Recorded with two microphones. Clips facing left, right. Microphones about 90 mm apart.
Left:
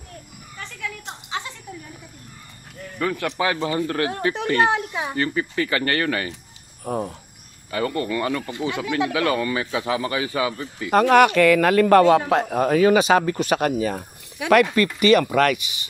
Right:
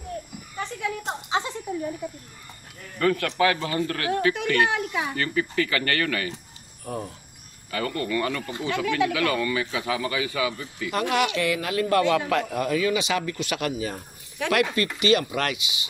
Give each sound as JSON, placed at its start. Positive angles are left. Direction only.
{"t": 0.6, "sound": "a sound", "side_deg": -20}
{"t": 3.0, "sound": "speech", "side_deg": 10}
{"t": 6.8, "sound": "speech", "side_deg": 40}
{"t": 7.7, "sound": "speech", "side_deg": 25}
{"t": 12.0, "sound": "speech", "side_deg": 35}
{"t": 12.4, "sound": "speech", "side_deg": 45}